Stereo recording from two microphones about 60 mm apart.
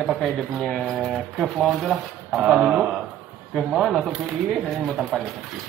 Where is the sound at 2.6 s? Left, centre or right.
Centre.